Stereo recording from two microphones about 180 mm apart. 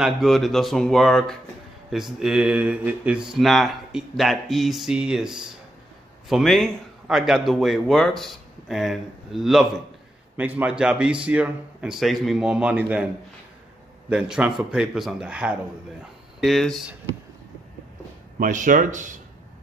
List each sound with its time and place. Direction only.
0.0 s a man's voice: centre (ahead or behind)
18.4 s speech: 45° right (ahead or behind)